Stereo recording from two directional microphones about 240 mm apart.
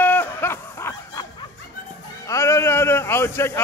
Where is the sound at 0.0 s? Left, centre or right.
Centre.